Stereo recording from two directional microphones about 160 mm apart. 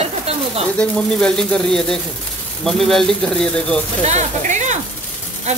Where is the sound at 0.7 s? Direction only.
5° left (ahead or behind).